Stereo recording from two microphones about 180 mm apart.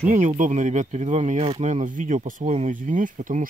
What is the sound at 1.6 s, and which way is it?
Speech, 40° right (ahead or behind).